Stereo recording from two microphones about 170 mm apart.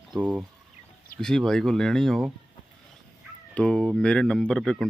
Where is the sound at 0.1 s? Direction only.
5° right (ahead or behind).